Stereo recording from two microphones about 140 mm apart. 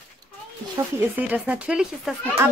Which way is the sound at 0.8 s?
20° right (ahead or behind).